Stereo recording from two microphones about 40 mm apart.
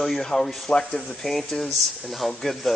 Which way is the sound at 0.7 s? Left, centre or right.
Centre.